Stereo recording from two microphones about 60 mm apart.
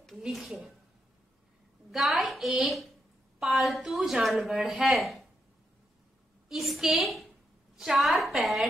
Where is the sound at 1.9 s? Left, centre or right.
Centre.